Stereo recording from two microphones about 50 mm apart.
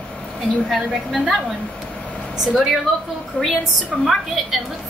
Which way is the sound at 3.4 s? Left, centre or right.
Centre.